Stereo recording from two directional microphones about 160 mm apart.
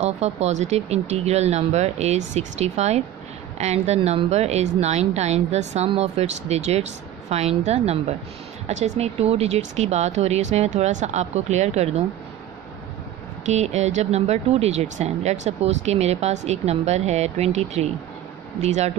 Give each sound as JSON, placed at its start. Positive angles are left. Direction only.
{"t": 0.0, "sound": "a woman's voice", "side_deg": -45}
{"t": 13.5, "sound": "a woman's voice", "side_deg": -45}